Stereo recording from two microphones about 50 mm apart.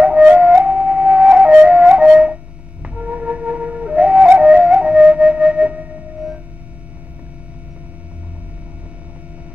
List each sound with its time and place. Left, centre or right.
0.4 s music: right
2.8 s flute: right